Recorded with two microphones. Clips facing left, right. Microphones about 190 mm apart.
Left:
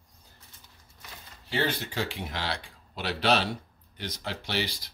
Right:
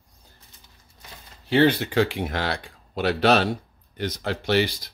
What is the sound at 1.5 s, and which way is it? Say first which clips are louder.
Speech: right 11 dB; 65° right (ahead or behind).